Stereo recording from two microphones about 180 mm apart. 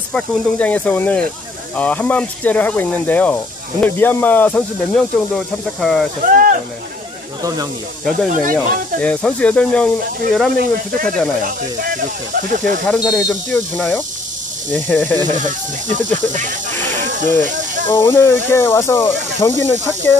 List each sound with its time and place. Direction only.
0.1 s speech: 10° left (ahead or behind)
6.2 s speech: 50° right (ahead or behind)
8.0 s speech: centre (ahead or behind)
8.3 s speech: 45° right (ahead or behind)
8.5 s speech: 5° left (ahead or behind)
11.1 s speech: 5° left (ahead or behind)
11.8 s speech: 50° right (ahead or behind)
12.8 s speech: centre (ahead or behind)
15.2 s speech: 45° right (ahead or behind)
16.8 s snake: 45° right (ahead or behind)
17.8 s speech: 15° left (ahead or behind)